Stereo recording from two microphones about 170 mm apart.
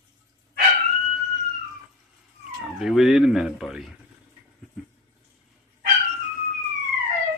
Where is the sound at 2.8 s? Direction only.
Centre (ahead or behind).